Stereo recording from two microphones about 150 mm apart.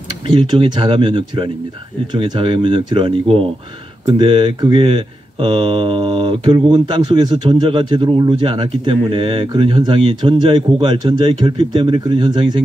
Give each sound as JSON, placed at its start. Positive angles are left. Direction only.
{"t": 0.3, "sound": "speech", "side_deg": -35}